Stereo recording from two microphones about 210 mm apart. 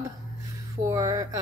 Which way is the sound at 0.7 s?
15° right (ahead or behind).